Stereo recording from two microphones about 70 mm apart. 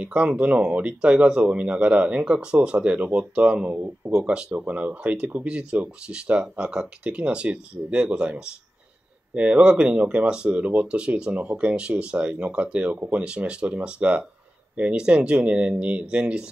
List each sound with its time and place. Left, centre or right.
0.0 s speech: centre